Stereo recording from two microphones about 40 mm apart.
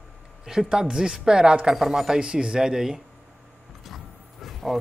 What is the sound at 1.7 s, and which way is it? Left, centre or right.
Speech, centre.